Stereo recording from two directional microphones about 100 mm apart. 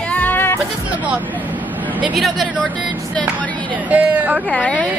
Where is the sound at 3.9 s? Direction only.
15° right (ahead or behind).